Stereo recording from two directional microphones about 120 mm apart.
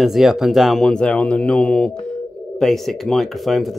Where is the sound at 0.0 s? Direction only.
Centre (ahead or behind).